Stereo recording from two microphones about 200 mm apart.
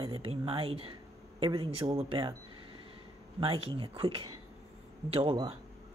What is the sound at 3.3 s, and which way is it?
Speech, 25° right (ahead or behind).